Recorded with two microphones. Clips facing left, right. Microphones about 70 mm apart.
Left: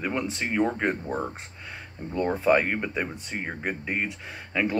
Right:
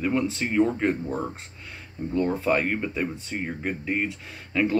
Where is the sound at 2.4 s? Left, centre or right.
Centre.